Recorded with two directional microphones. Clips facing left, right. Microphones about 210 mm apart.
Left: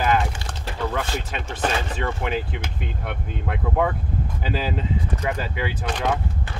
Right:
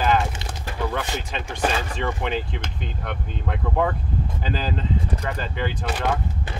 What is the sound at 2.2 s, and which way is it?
Speech, 5° left (ahead or behind).